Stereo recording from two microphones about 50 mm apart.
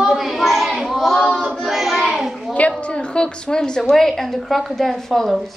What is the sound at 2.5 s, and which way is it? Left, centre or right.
A woman's voice, left.